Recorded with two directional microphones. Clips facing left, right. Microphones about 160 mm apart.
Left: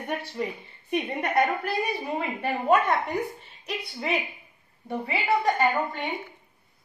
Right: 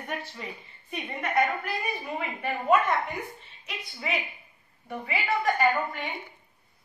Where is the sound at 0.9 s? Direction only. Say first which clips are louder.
Left 3 dB; 35° left (ahead or behind).